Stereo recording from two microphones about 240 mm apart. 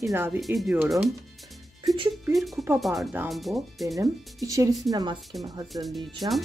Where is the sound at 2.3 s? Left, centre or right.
Centre.